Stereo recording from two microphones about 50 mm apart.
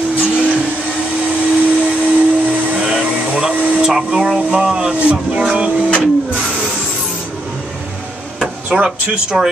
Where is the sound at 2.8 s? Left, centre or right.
Centre.